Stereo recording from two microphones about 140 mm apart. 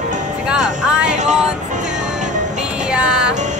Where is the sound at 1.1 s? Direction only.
60° right (ahead or behind).